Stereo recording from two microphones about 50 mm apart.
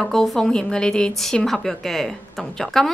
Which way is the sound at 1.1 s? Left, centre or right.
Centre.